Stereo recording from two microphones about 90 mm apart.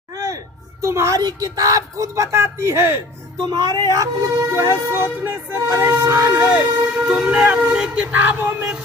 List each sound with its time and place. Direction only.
0.1 s a sound: 40° right (ahead or behind)
1.2 s speech: 45° right (ahead or behind)
3.4 s speech: 50° right (ahead or behind)
6.5 s speech: 15° right (ahead or behind)
7.2 s speech: 5° right (ahead or behind)
8.1 s a sound: 20° right (ahead or behind)